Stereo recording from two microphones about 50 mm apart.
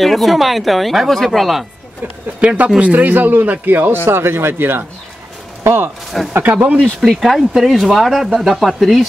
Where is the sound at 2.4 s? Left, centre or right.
Right.